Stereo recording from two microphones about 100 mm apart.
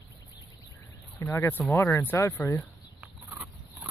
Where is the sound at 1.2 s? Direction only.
20° left (ahead or behind).